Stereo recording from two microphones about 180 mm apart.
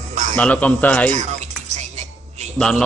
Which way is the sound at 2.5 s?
5° left (ahead or behind).